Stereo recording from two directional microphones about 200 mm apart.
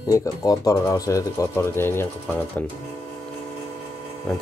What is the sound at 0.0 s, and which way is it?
Speech, 15° left (ahead or behind).